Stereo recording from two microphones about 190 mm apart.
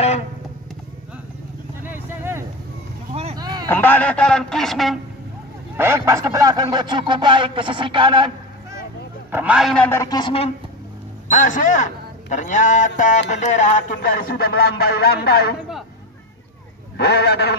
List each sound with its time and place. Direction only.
1.8 s vehicle: 10° right (ahead or behind)
3.3 s a sound: 20° right (ahead or behind)
3.6 s a man's voice: 10° left (ahead or behind)
5.8 s speech: 15° right (ahead or behind)
9.3 s a man's voice: 5° right (ahead or behind)
9.8 s speech: 15° left (ahead or behind)
11.2 s a man's voice: 45° left (ahead or behind)
13.3 s a sound: 40° left (ahead or behind); by 15.5 s 55° left (ahead or behind)
16.9 s a sound: 60° left (ahead or behind)